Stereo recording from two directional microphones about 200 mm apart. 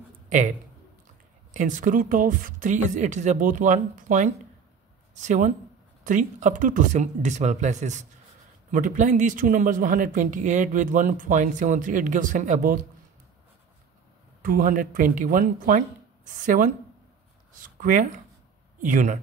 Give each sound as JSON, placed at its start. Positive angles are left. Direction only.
{"t": 0.3, "sound": "speech", "side_deg": -40}
{"t": 14.4, "sound": "speech", "side_deg": -45}